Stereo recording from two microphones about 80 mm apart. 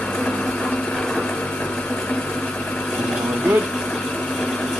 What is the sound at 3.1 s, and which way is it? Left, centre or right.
Pump, centre.